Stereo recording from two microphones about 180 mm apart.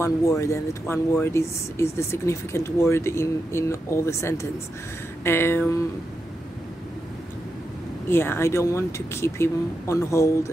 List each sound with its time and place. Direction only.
0.0 s speech: 15° left (ahead or behind)
8.1 s speech: 15° left (ahead or behind)